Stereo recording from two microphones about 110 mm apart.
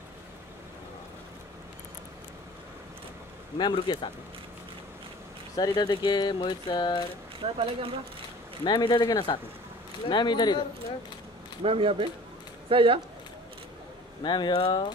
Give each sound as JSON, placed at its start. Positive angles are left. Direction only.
{"t": 3.5, "sound": "speech", "side_deg": 45}
{"t": 5.6, "sound": "speech", "side_deg": 40}
{"t": 7.3, "sound": "speech", "side_deg": -60}
{"t": 8.6, "sound": "speech", "side_deg": 45}
{"t": 11.6, "sound": "speech", "side_deg": -60}
{"t": 14.2, "sound": "speech", "side_deg": 40}